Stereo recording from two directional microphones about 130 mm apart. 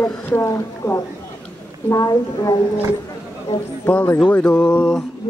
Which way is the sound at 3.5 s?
55° left (ahead or behind).